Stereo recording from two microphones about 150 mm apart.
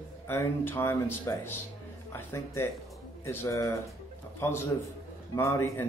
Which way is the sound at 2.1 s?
15° left (ahead or behind).